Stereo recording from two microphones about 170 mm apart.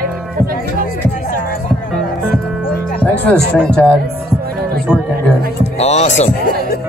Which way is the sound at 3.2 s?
5° left (ahead or behind).